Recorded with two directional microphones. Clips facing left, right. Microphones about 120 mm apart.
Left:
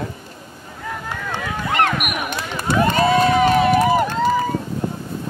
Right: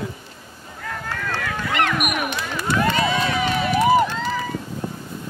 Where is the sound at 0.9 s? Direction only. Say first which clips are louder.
Left 1 dB; 15° left (ahead or behind).